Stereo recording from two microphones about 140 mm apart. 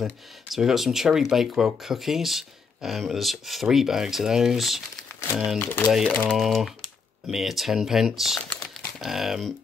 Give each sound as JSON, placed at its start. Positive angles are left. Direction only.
{"t": 0.0, "sound": "speech", "side_deg": 0}
{"t": 5.6, "sound": "speech", "side_deg": 15}